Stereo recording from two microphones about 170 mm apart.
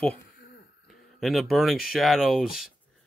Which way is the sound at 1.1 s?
Centre (ahead or behind).